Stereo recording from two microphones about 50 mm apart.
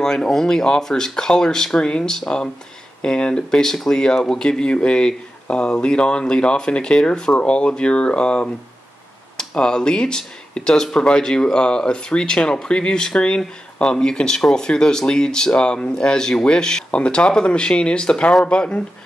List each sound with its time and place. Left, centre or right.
0.0 s speech: centre